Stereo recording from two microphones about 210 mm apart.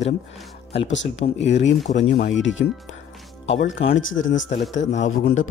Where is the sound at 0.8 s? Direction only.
60° left (ahead or behind).